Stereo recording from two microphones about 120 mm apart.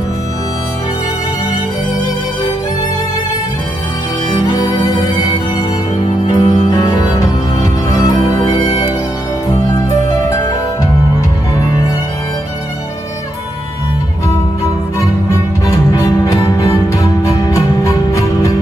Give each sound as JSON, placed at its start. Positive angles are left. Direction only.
{"t": 4.3, "sound": "music", "side_deg": 35}
{"t": 6.2, "sound": "music", "side_deg": 35}
{"t": 15.6, "sound": "music", "side_deg": 30}